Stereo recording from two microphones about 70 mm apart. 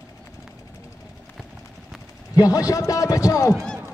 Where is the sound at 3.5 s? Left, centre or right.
Centre.